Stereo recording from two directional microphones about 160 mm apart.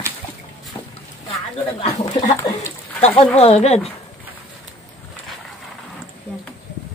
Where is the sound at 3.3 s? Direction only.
40° left (ahead or behind).